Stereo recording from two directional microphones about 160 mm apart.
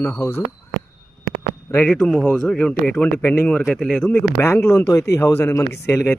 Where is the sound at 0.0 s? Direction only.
15° left (ahead or behind).